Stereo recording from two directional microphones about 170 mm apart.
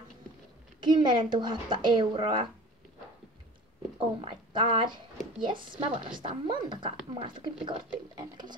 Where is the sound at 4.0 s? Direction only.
30° right (ahead or behind).